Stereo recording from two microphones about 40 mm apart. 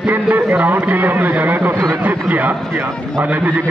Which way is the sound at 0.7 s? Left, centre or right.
Right.